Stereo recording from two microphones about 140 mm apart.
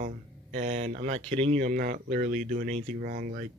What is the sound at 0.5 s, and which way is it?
Speech, 50° right (ahead or behind).